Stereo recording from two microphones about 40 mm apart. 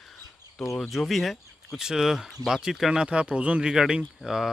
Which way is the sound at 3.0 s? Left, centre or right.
Right.